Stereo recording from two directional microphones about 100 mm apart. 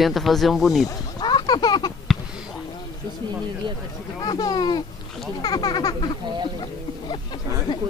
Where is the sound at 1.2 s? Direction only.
50° left (ahead or behind).